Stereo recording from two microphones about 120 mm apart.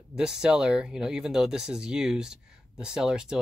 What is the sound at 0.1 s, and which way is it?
Speech, 5° right (ahead or behind).